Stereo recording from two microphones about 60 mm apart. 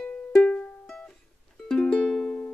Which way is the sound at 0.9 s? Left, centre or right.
Centre.